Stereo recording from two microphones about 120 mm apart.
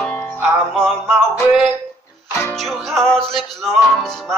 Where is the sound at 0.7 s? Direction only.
5° left (ahead or behind).